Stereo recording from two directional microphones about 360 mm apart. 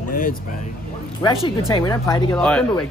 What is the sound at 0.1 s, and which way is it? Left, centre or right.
Speech, left.